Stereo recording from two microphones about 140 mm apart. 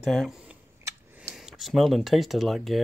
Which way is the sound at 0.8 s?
15° right (ahead or behind).